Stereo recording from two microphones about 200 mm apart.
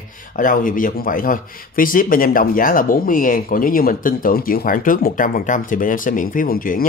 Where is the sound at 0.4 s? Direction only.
45° left (ahead or behind).